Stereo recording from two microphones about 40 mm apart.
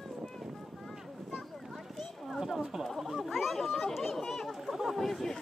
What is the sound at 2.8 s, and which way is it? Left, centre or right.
Speech, centre.